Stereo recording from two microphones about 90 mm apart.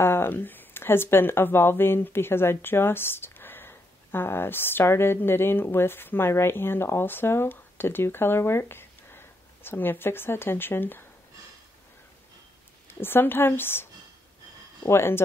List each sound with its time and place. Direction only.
0.0 s speech: 25° left (ahead or behind)
12.8 s speech: 25° left (ahead or behind)
14.9 s speech: 25° left (ahead or behind)